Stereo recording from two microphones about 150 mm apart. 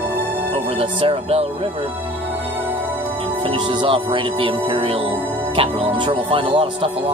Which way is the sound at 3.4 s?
35° right (ahead or behind).